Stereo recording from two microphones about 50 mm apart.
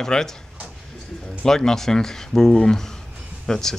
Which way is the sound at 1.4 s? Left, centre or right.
Centre.